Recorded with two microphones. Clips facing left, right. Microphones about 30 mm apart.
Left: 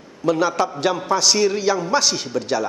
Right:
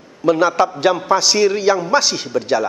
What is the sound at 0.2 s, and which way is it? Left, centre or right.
A man's voice, centre.